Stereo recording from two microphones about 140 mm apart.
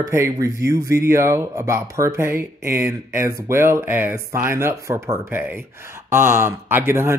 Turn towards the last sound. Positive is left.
turn(degrees=-15)  # may be behind; listen again after turning